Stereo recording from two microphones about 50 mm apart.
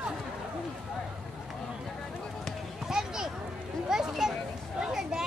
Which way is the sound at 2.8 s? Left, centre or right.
Centre.